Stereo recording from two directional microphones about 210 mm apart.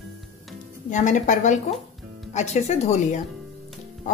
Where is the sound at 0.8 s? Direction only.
35° left (ahead or behind).